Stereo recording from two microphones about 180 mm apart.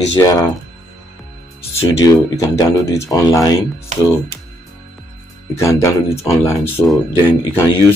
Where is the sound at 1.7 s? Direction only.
20° left (ahead or behind).